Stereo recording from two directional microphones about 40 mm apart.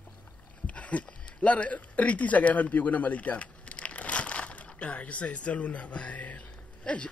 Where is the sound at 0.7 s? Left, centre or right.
Left.